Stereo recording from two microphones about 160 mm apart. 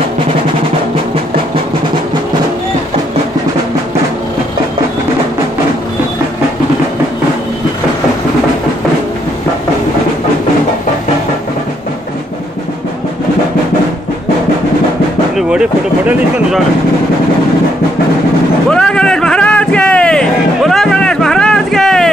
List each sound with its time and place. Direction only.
15.3 s speech: 5° right (ahead or behind)
18.7 s vehicle: 5° left (ahead or behind)